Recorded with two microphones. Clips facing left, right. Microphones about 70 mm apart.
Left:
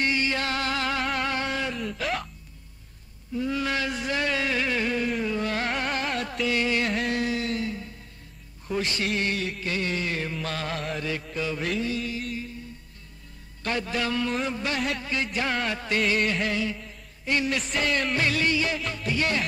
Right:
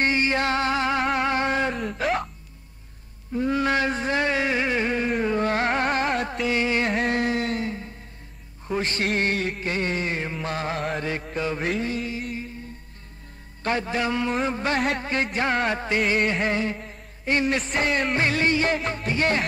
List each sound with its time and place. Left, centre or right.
0.0 s music: right
1.2 s a sound: right
1.8 s music: right
3.3 s a sound: right
5.1 s music: right
6.2 s music: right
6.9 s a sound: right
10.7 s music: right
11.0 s music: right
11.8 s mantra: right
13.6 s a man's voice: right
14.4 s music: right
18.1 s music: right